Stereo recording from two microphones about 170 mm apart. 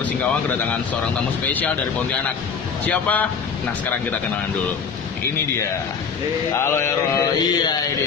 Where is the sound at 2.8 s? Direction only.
10° left (ahead or behind).